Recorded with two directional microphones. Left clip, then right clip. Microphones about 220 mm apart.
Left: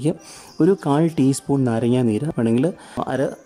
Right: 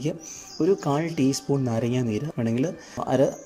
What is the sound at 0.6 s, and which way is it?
Speech, 15° left (ahead or behind).